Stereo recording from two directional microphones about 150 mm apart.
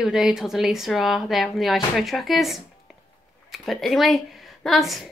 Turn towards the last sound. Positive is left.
turn(degrees=0)  # may be behind; listen again after turning